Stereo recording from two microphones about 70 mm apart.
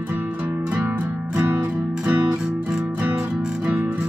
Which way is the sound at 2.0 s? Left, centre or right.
Centre.